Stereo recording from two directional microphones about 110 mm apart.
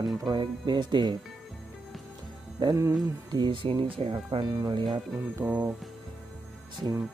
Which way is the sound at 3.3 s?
45° right (ahead or behind).